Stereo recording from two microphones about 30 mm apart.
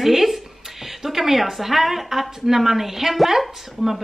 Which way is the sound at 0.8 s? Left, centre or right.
Centre.